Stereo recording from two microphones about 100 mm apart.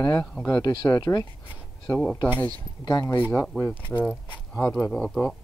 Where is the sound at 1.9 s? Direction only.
10° left (ahead or behind).